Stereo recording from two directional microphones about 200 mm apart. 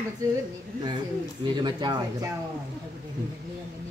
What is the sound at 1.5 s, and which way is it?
Speech, 20° right (ahead or behind).